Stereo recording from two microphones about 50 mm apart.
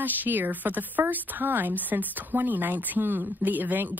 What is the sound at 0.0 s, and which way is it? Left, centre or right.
A woman's voice, right.